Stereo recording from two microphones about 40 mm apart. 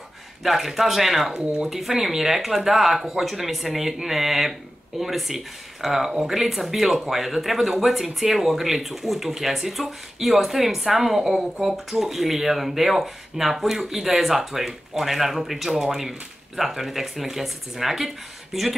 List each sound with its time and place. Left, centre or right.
0.4 s speech: centre